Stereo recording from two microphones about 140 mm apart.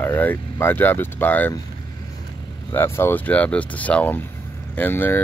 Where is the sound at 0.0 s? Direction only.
15° left (ahead or behind).